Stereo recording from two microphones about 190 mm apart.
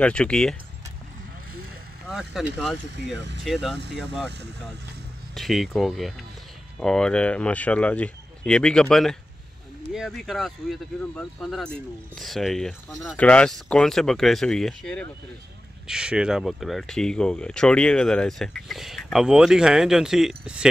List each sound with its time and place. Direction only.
0.0 s speech: 5° left (ahead or behind)
2.0 s speech: centre (ahead or behind)
3.5 s speech: centre (ahead or behind)
3.8 s speech: 65° right (ahead or behind)
5.3 s speech: centre (ahead or behind)